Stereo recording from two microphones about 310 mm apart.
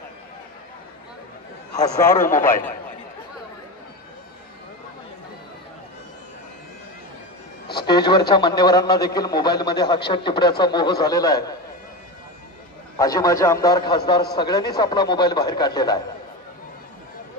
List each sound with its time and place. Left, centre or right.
2.1 s a man's voice: left
7.6 s a man's voice: centre
12.9 s a man's voice: centre